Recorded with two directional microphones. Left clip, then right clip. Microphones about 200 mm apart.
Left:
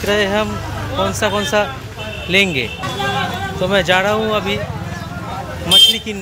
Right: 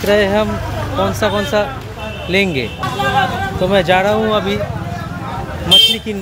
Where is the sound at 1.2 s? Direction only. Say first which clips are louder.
Even; 5° left (ahead or behind); by 4.6 s 10° right (ahead or behind).